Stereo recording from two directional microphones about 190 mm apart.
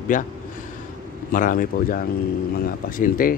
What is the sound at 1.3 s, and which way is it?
Speech, 45° left (ahead or behind).